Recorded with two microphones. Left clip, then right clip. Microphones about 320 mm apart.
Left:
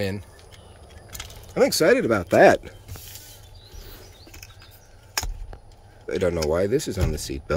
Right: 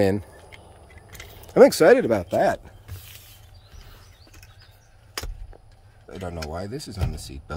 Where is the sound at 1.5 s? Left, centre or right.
Centre.